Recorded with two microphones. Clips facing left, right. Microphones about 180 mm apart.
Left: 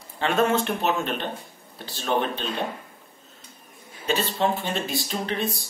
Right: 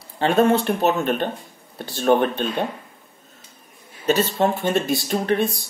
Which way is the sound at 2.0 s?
50° right (ahead or behind).